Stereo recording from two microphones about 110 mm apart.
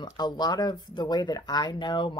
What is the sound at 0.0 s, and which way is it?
Speech, 40° left (ahead or behind).